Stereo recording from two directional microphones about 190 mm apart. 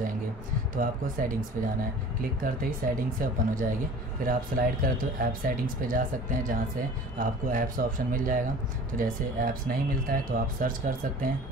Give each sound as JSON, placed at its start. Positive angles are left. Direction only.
{"t": 0.7, "sound": "speech", "side_deg": -45}
{"t": 2.4, "sound": "speech", "side_deg": -50}